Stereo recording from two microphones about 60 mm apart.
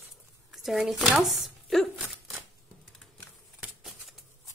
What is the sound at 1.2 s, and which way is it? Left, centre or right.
Chopping, centre.